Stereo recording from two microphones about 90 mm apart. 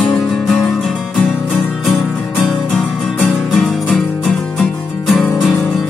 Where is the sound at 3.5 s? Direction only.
Centre (ahead or behind).